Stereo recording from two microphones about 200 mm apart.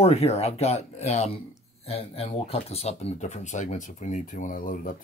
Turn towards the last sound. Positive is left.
turn(degrees=45)  # may be behind; listen again after turning